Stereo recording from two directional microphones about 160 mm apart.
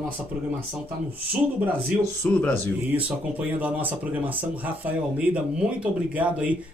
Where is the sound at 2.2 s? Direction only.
10° left (ahead or behind).